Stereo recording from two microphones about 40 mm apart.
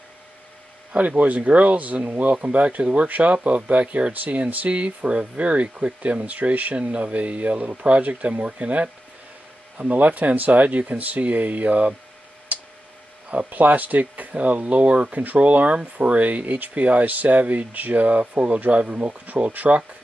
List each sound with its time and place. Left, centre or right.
0.9 s speech: right
12.5 s tick: right
13.3 s speech: right